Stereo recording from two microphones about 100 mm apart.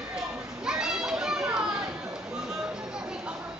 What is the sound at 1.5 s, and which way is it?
Chatter, 5° right (ahead or behind).